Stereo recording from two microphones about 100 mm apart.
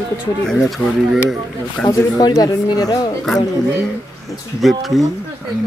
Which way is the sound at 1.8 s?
35° left (ahead or behind).